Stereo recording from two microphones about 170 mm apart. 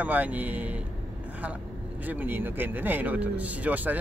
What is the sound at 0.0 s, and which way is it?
A man's voice, 10° right (ahead or behind).